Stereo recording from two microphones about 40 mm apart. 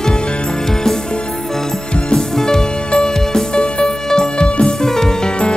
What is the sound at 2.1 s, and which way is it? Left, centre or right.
Music, centre.